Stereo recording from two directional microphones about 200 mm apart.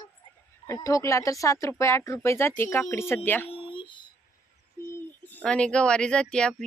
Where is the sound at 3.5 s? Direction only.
25° left (ahead or behind).